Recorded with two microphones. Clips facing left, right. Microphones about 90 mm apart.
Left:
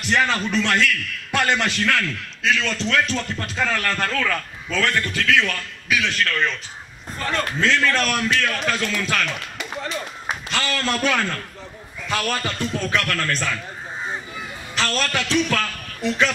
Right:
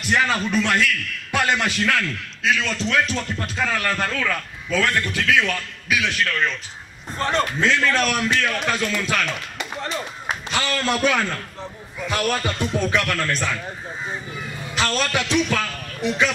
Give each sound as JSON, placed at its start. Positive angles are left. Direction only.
{"t": 0.0, "sound": "a man's voice", "side_deg": -5}
{"t": 7.2, "sound": "a man's voice", "side_deg": -25}
{"t": 7.8, "sound": "a man's voice", "side_deg": -5}
{"t": 14.8, "sound": "speech", "side_deg": -10}